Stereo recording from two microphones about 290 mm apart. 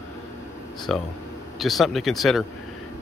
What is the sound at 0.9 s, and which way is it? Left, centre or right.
Speech, centre.